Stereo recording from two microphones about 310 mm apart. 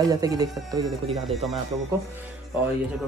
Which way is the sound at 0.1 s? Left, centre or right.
Centre.